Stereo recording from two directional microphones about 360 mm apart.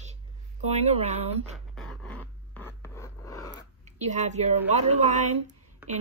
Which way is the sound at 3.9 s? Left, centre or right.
Centre.